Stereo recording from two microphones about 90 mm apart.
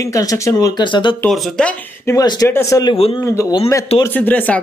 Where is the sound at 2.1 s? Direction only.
40° left (ahead or behind).